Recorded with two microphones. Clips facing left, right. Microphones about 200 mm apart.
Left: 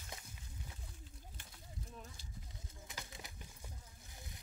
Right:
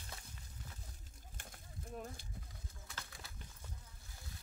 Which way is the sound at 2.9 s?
20° left (ahead or behind).